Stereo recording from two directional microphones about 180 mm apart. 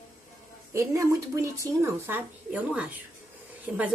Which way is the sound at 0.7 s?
20° right (ahead or behind).